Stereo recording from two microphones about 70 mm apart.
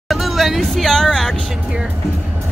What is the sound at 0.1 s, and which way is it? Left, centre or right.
Speech, centre.